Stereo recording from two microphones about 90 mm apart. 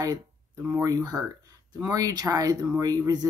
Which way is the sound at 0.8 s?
45° right (ahead or behind).